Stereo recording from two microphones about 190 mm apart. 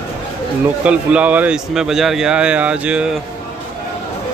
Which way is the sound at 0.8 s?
5° right (ahead or behind).